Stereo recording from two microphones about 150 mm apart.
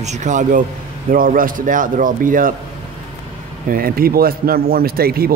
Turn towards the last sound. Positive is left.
turn(degrees=-90)